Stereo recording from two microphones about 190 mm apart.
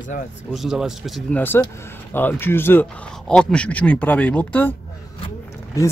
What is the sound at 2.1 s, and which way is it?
Speech, 10° left (ahead or behind).